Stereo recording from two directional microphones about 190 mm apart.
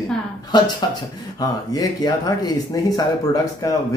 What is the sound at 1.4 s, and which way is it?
Speech, 20° left (ahead or behind).